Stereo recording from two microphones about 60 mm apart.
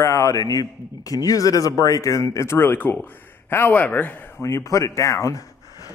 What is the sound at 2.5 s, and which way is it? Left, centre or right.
Speech, left.